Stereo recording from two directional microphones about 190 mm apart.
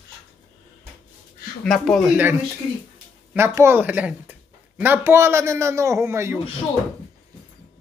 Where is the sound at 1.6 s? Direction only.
Centre (ahead or behind).